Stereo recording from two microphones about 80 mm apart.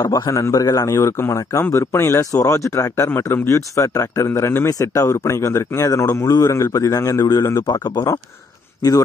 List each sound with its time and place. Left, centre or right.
0.0 s a man's voice: left
0.3 s a man's voice: left